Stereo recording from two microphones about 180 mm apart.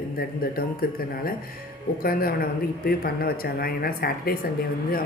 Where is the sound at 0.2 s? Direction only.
55° left (ahead or behind).